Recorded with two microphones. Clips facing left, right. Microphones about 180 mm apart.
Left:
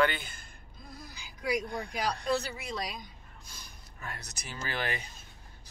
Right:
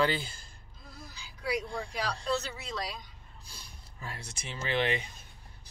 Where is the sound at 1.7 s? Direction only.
30° right (ahead or behind).